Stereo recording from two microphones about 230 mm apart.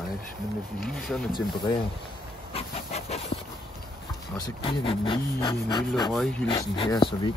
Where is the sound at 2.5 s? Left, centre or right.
Left.